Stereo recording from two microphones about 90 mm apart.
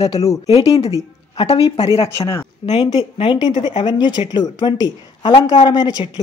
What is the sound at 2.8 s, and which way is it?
A woman's voice, 55° left (ahead or behind).